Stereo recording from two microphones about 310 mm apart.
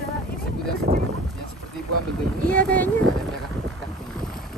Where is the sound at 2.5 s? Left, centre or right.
Centre.